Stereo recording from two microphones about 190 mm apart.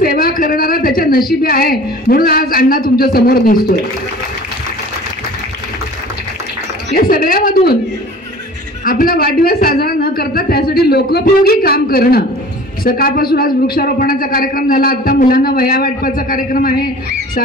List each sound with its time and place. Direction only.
0.0 s a woman's voice: 50° left (ahead or behind)
6.9 s a woman's voice: 50° left (ahead or behind)
8.8 s a woman's voice: 50° left (ahead or behind)